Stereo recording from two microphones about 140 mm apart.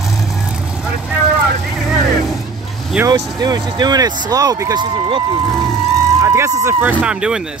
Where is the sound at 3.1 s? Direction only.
30° right (ahead or behind).